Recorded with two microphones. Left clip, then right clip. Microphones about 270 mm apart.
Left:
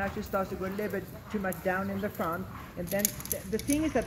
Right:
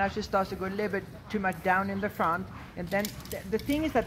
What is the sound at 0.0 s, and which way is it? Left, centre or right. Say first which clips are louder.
Speech: right 4 dB; right.